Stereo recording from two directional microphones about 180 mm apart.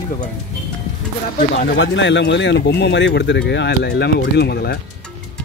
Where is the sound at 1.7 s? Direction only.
90° left; by 4.8 s 65° left (ahead or behind).